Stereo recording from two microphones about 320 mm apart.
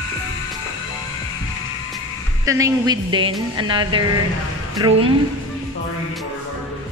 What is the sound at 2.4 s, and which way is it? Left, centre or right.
Speech, centre.